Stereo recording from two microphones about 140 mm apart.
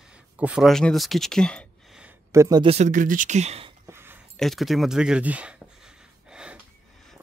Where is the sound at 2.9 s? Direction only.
70° right (ahead or behind); by 3.7 s 50° right (ahead or behind).